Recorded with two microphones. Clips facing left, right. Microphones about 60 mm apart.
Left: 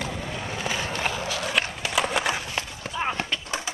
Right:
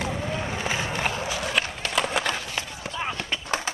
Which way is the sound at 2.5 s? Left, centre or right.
Centre.